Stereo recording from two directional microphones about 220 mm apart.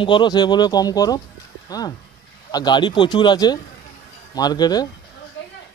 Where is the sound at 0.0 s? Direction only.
20° left (ahead or behind).